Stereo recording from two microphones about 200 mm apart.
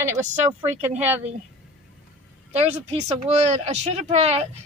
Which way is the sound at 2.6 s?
30° right (ahead or behind).